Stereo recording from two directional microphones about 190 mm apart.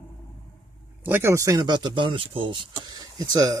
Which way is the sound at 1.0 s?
10° right (ahead or behind).